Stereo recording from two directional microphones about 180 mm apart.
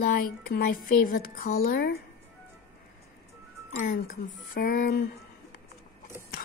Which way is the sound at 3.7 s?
45° left (ahead or behind).